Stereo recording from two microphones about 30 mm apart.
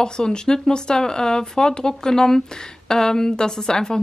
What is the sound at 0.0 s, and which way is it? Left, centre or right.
A woman's voice, left.